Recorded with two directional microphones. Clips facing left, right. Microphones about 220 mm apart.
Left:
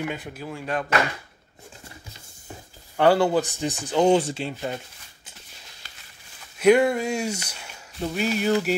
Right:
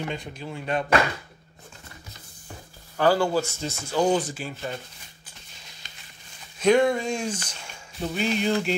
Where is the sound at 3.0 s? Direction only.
20° left (ahead or behind).